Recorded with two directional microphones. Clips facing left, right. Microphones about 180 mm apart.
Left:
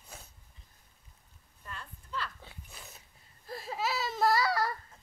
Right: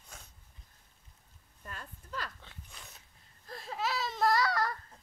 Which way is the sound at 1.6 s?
40° right (ahead or behind).